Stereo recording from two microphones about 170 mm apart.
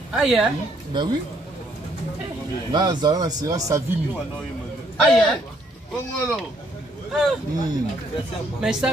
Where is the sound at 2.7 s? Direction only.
25° right (ahead or behind).